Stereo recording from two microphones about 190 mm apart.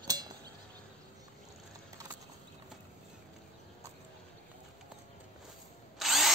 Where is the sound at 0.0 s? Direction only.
20° right (ahead or behind).